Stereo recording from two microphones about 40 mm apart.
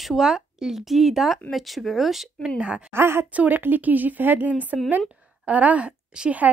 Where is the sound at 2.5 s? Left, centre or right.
Right.